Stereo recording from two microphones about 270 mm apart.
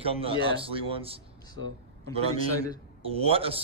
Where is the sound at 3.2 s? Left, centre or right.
Right.